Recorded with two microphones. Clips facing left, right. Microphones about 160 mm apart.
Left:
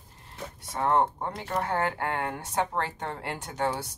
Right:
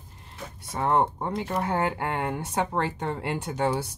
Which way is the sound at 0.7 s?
15° right (ahead or behind).